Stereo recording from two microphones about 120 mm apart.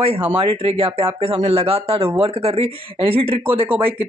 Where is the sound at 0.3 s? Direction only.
50° right (ahead or behind).